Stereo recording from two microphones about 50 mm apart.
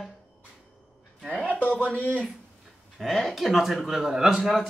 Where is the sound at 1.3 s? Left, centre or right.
Left.